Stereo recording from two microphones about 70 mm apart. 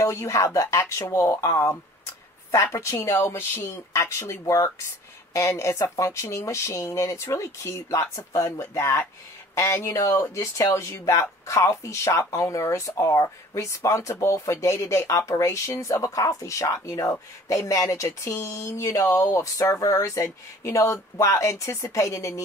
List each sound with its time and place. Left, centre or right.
0.0 s speech: left
2.7 s speech: left